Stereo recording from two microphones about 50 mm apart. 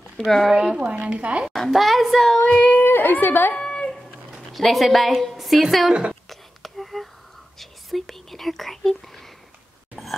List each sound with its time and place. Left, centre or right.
0.2 s speech: centre
0.6 s a woman's voice: centre
1.5 s speech: centre
2.5 s a sound: left
2.8 s speech: left
3.5 s a sound: left
4.3 s a woman's voice: centre
6.2 s whispering: centre
7.5 s speech: centre
10.0 s a sound: centre